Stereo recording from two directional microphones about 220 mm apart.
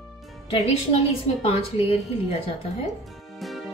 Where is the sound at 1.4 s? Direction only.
25° left (ahead or behind).